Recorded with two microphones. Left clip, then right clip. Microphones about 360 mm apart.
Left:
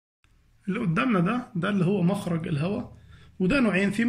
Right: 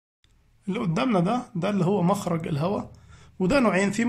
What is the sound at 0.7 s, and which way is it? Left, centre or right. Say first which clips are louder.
A man's voice: right 1 dB; centre.